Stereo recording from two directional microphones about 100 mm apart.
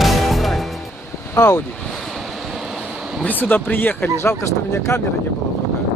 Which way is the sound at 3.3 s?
20° left (ahead or behind).